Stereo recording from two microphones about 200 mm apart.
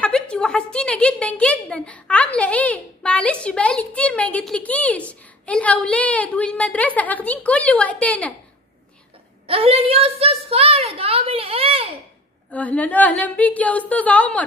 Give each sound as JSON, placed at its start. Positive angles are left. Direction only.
{"t": 0.0, "sound": "a woman's voice", "side_deg": 5}
{"t": 9.5, "sound": "a woman's voice", "side_deg": -30}
{"t": 12.4, "sound": "a woman's voice", "side_deg": 5}